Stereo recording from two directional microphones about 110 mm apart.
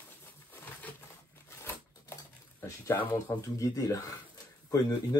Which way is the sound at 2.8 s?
20° left (ahead or behind).